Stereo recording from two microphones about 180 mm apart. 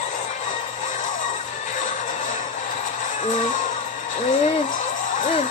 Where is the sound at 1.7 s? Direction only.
45° left (ahead or behind).